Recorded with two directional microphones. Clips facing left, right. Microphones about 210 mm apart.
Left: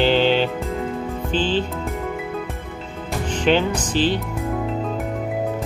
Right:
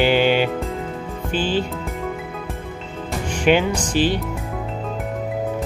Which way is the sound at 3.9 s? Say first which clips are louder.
Right 1 dB; 10° right (ahead or behind).